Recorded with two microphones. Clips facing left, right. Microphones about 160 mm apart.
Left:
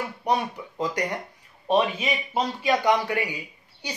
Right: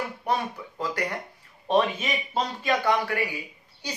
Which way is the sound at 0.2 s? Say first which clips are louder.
Left 4 dB; 15° left (ahead or behind).